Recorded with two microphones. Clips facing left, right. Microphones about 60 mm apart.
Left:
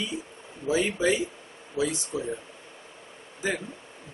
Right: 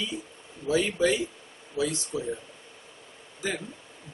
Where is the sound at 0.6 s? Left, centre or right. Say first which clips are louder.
Even; centre.